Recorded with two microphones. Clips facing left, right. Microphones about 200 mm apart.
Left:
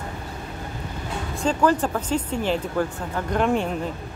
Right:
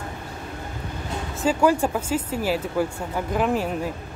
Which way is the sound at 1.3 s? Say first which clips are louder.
Right 1 dB; 5° right (ahead or behind).